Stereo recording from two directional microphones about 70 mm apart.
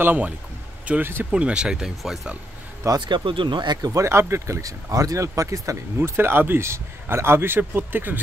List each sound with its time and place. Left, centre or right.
0.0 s speech: right; by 2.3 s centre
3.1 s speech: right
3.9 s speech: right
5.9 s a man's voice: right